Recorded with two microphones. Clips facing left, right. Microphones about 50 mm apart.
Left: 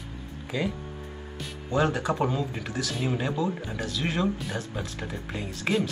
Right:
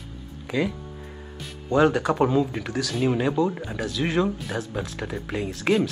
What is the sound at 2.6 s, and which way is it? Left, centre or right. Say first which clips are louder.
Speech: right 4 dB; right.